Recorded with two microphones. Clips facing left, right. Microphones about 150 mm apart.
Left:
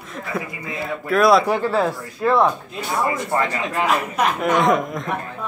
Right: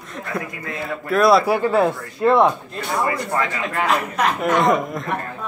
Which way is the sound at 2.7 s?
Centre (ahead or behind).